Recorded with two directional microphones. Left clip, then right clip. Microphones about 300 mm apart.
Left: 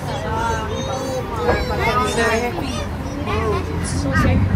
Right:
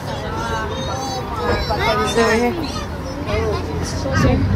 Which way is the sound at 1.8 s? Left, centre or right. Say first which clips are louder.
Right 4 dB; centre.